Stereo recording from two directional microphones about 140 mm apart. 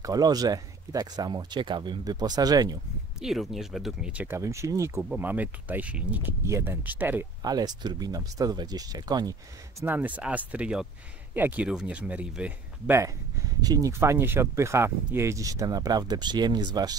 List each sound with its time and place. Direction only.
0.0 s speech: 25° right (ahead or behind)
3.2 s speech: centre (ahead or behind)
7.4 s speech: 30° right (ahead or behind)
9.8 s speech: 10° right (ahead or behind)
13.6 s speech: 25° right (ahead or behind)